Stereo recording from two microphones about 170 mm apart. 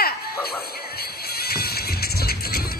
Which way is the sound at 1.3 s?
65° left (ahead or behind).